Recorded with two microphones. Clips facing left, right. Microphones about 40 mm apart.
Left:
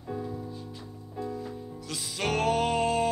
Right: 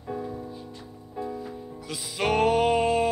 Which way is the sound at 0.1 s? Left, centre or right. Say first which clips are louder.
Right 2 dB; centre.